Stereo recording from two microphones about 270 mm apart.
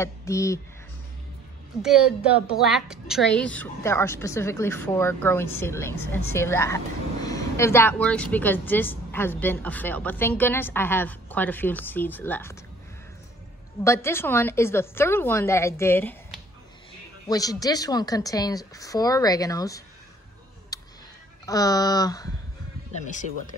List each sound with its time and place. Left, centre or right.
0.0 s a woman's voice: centre
1.8 s a woman's voice: centre
13.8 s a woman's voice: centre
20.7 s a sound: centre
21.5 s a woman's voice: centre
22.9 s speech: left